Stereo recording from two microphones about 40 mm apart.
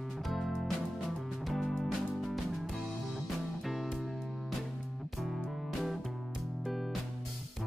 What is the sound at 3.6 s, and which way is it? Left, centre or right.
Music, centre.